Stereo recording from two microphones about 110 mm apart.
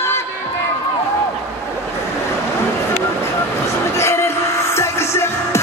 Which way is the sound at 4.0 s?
25° left (ahead or behind).